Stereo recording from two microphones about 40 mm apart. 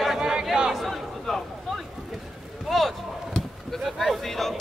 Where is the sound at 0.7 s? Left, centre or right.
Centre.